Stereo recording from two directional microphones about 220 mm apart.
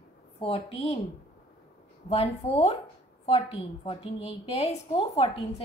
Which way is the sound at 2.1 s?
30° left (ahead or behind).